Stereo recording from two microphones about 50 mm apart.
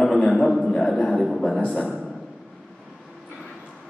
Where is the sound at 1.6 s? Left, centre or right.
Left.